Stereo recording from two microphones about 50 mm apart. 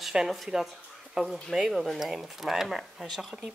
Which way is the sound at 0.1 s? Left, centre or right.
Centre.